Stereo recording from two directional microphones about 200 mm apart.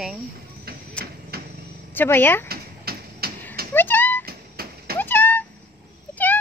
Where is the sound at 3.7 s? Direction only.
10° left (ahead or behind).